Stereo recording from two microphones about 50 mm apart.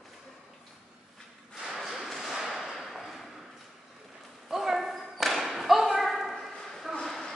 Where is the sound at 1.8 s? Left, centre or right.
Centre.